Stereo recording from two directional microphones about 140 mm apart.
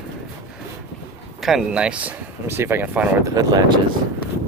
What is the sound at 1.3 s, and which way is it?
Speech, 5° right (ahead or behind).